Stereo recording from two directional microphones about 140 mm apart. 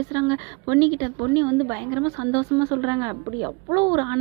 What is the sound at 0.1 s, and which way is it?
A woman's voice, 25° right (ahead or behind).